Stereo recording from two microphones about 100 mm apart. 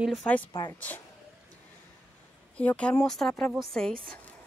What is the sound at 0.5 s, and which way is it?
Speech, 45° left (ahead or behind).